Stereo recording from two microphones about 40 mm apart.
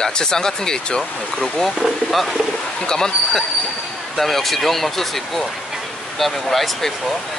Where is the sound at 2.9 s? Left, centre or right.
Centre.